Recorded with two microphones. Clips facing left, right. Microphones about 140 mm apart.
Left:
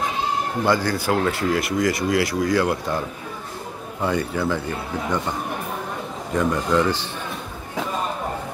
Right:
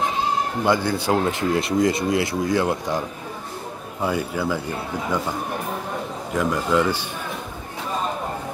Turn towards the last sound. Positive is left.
turn(degrees=-10)  # may be behind; listen again after turning